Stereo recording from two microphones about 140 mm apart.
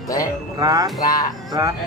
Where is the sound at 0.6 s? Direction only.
25° right (ahead or behind).